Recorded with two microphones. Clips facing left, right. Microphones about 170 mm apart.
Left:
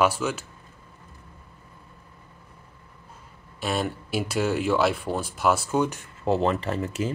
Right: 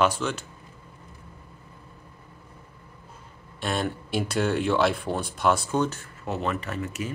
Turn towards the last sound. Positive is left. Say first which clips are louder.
# left 4 dB
turn(degrees=30)  # may be behind; listen again after turning